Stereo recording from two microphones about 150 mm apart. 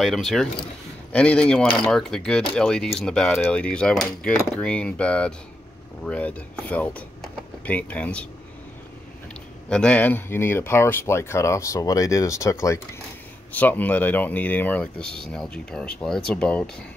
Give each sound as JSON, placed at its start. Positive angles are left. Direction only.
{"t": 0.0, "sound": "speech", "side_deg": 0}
{"t": 9.7, "sound": "speech", "side_deg": 5}